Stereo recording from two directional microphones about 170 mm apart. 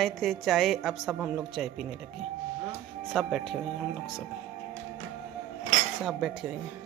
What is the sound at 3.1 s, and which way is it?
Speech, centre (ahead or behind).